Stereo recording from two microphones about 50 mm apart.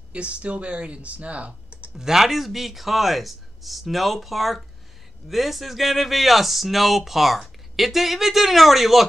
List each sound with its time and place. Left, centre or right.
0.1 s speech: right
2.0 s speech: centre